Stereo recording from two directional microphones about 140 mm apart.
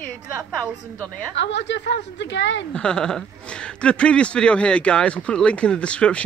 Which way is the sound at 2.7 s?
5° left (ahead or behind).